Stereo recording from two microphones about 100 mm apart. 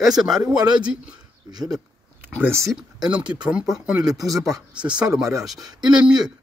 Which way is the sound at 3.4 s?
5° right (ahead or behind).